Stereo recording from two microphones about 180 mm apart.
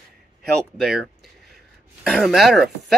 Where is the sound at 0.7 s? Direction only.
Centre (ahead or behind).